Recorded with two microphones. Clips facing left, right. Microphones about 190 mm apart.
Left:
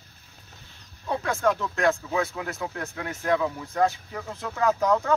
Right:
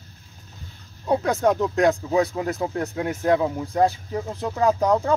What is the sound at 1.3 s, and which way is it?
Speech, 20° right (ahead or behind).